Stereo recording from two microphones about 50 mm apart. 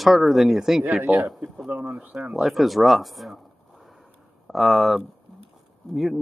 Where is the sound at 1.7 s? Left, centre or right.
Right.